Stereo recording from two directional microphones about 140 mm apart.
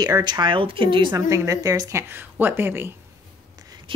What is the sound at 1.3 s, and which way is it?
A woman's voice, 20° right (ahead or behind).